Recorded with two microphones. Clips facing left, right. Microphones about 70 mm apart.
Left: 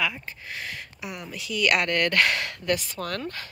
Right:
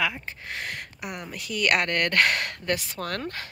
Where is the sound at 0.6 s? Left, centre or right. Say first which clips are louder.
Right 1 dB; right.